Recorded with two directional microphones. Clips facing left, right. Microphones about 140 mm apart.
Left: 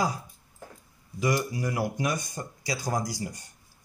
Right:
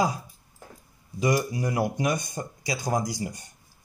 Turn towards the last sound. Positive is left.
turn(degrees=-15)  # may be behind; listen again after turning